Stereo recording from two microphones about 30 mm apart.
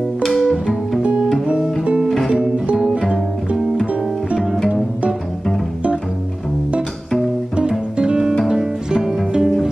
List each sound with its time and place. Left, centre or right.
0.3 s music: centre
2.3 s music: right
8.5 s music: centre